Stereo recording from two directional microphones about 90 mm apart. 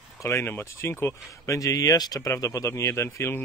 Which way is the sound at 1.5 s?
40° left (ahead or behind).